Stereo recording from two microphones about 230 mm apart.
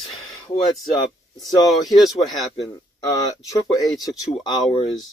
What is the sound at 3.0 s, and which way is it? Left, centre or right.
Speech, centre.